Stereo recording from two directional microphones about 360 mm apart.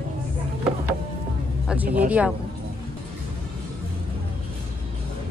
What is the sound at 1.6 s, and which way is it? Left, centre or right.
Speech, centre.